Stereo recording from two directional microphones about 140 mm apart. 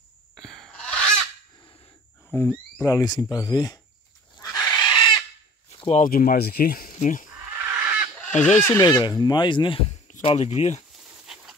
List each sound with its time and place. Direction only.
0.4 s honk: centre (ahead or behind)
2.3 s speech: 15° left (ahead or behind)
3.2 s speech: 25° left (ahead or behind)
4.4 s horse: 30° left (ahead or behind)
5.7 s a sound: 50° left (ahead or behind)
6.0 s speech: 90° left; by 7.2 s 65° left (ahead or behind)
7.5 s a sound: 10° right (ahead or behind)
8.3 s speech: 60° left (ahead or behind)
8.6 s speech: 25° left (ahead or behind); by 10.8 s 55° left (ahead or behind)